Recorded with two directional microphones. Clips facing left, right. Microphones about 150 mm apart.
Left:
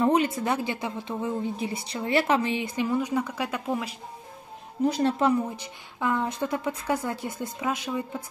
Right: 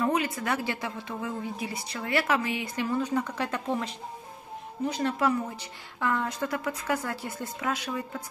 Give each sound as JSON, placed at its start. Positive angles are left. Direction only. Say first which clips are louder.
{"t": 0.0, "sound": "a woman's voice", "louder": "left 5 dB", "side_deg": 25}
{"t": 4.9, "sound": "speech", "louder": "left 2 dB", "side_deg": 35}
{"t": 5.6, "sound": "a woman's voice", "louder": "left 2 dB", "side_deg": 20}